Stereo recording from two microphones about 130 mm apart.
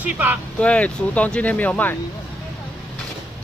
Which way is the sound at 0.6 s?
10° left (ahead or behind).